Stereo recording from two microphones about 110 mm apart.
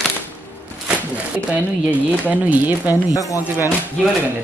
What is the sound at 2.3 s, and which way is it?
Speech, 15° right (ahead or behind).